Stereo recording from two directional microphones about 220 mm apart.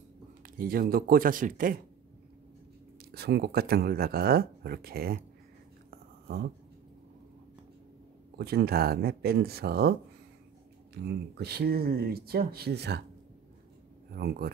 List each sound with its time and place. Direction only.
0.4 s a man's voice: 40° right (ahead or behind)
3.1 s speech: 45° right (ahead or behind)
5.9 s a sound: 45° right (ahead or behind)
8.4 s speech: 45° right (ahead or behind)
11.1 s speech: 50° right (ahead or behind)
14.1 s speech: 45° right (ahead or behind)